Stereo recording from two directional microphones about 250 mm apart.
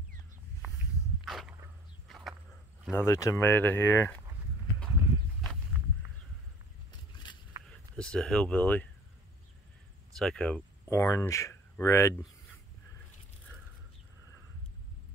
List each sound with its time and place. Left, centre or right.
1.2 s dog: centre
2.0 s a sound: centre
2.9 s speech: centre
5.4 s walk: centre
7.2 s a sound: centre
7.7 s speech: centre
10.1 s speech: centre